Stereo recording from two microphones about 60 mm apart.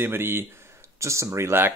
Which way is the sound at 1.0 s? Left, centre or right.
Right.